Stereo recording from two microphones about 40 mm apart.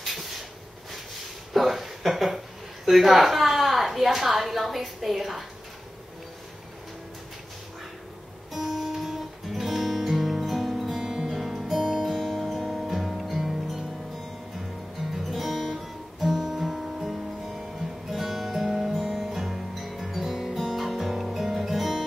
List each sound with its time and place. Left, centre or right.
0.0 s a sound: centre
1.5 s a sound: centre
8.5 s guitar: centre
11.2 s music: centre
12.2 s music: centre
15.2 s guitar: centre
18.1 s music: centre
20.5 s music: centre
20.8 s guitar: centre